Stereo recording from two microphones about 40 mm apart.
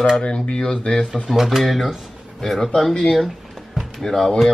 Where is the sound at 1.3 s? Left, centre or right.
Centre.